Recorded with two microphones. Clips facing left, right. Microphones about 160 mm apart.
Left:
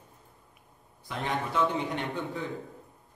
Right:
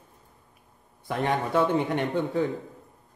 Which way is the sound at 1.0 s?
55° right (ahead or behind).